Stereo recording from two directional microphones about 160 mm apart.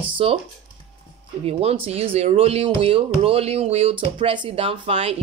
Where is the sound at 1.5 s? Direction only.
40° right (ahead or behind).